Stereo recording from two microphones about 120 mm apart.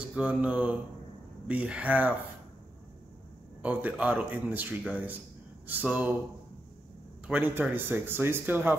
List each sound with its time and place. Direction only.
0.0 s speech: 10° right (ahead or behind)
3.6 s speech: 10° right (ahead or behind)
7.2 s speech: 15° right (ahead or behind)